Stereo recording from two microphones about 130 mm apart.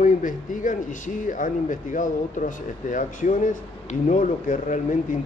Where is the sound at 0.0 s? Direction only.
90° left.